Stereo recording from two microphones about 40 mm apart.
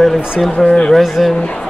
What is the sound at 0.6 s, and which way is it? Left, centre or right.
Speech, left.